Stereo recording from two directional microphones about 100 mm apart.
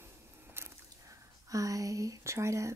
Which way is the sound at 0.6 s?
25° right (ahead or behind).